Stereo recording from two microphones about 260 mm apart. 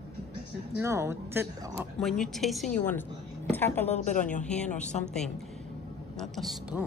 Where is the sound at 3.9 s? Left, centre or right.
Left.